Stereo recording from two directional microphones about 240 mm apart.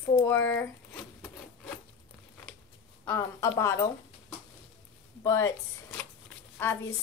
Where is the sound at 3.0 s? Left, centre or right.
Centre.